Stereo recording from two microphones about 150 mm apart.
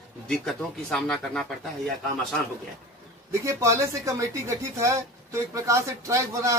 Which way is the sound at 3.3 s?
20° right (ahead or behind).